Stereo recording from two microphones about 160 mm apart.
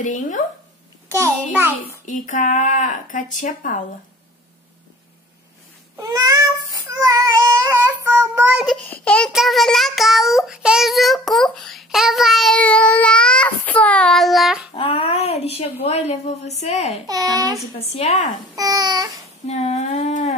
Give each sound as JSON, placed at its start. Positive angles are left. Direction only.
{"t": 0.0, "sound": "speech", "side_deg": 50}
{"t": 1.1, "sound": "a child's voice", "side_deg": -15}
{"t": 2.0, "sound": "speech", "side_deg": 50}
{"t": 5.9, "sound": "child singing", "side_deg": -20}
{"t": 8.8, "sound": "child singing", "side_deg": 10}
{"t": 14.7, "sound": "speech", "side_deg": 35}
{"t": 17.1, "sound": "a child's voice", "side_deg": -25}
{"t": 17.7, "sound": "speech", "side_deg": 40}
{"t": 18.6, "sound": "a child's voice", "side_deg": -25}
{"t": 19.4, "sound": "speech", "side_deg": 45}